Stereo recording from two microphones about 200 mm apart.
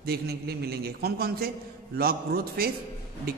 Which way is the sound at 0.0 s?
50° right (ahead or behind).